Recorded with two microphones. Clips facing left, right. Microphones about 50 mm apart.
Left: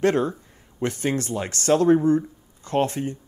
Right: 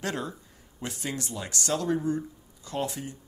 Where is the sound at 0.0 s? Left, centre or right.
Left.